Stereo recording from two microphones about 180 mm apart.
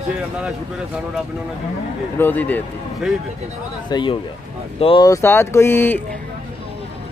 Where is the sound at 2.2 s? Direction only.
10° left (ahead or behind).